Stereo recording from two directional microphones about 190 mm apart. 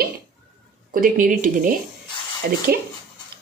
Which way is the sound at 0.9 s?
45° right (ahead or behind).